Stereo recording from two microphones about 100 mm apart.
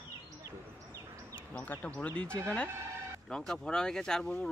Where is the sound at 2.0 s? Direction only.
10° left (ahead or behind).